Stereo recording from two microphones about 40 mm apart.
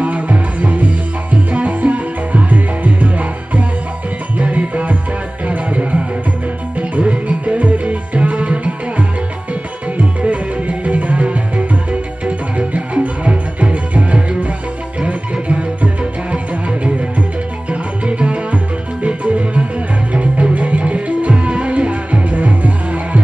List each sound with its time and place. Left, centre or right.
0.0 s music: right
17.6 s music: right